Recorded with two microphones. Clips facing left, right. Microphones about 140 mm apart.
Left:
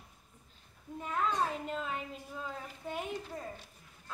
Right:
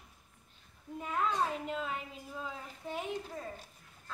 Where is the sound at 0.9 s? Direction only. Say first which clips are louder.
Even; 5° right (ahead or behind).